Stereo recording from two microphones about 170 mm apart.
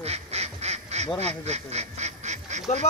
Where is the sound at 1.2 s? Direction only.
40° right (ahead or behind).